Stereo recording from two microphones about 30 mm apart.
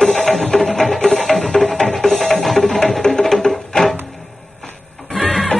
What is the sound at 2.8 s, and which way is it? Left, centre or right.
Music, left.